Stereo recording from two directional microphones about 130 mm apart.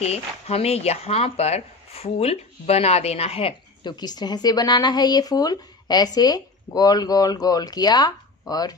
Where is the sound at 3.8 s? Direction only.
35° left (ahead or behind).